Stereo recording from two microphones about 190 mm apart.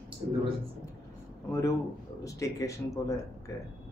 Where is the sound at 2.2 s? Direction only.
15° left (ahead or behind).